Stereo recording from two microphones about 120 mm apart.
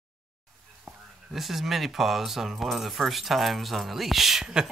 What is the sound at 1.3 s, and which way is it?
Speech, centre (ahead or behind).